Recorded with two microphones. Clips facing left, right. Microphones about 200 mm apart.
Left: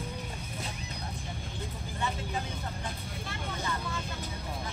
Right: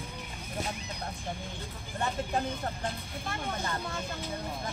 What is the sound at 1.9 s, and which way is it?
Vehicle, 50° right (ahead or behind).